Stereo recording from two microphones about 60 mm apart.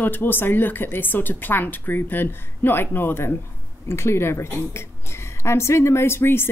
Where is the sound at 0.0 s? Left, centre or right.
Left.